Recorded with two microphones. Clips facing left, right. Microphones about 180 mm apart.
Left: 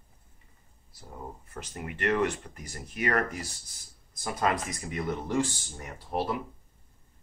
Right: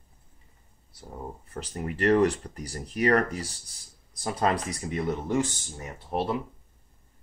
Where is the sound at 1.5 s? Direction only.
35° right (ahead or behind).